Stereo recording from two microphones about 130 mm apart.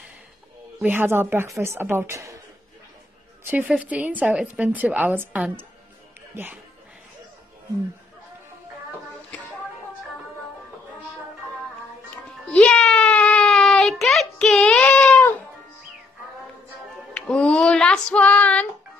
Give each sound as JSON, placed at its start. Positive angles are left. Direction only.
{"t": 0.8, "sound": "a woman's voice", "side_deg": -15}
{"t": 3.4, "sound": "a woman's voice", "side_deg": -10}
{"t": 6.3, "sound": "a woman's voice", "side_deg": -15}
{"t": 12.4, "sound": "a sound", "side_deg": 5}
{"t": 17.1, "sound": "female singing", "side_deg": 10}